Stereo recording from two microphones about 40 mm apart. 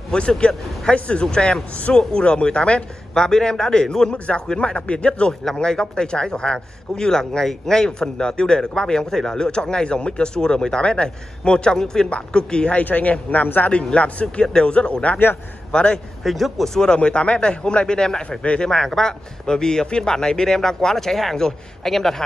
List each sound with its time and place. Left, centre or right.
0.1 s a man's voice: left
3.2 s a man's voice: centre
4.1 s a man's voice: left
12.7 s a man's voice: left
13.7 s a man's voice: left
14.4 s a man's voice: left
16.3 s speech: centre
16.6 s a man's voice: centre
18.4 s a man's voice: left
18.7 s a man's voice: centre